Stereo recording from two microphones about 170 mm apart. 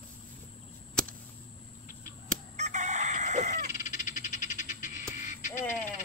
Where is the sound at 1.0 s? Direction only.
5° left (ahead or behind).